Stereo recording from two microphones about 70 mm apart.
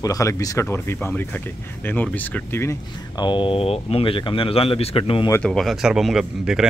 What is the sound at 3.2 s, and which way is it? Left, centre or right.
Speech, left.